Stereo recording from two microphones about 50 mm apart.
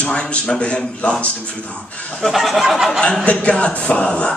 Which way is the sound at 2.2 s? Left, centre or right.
Centre.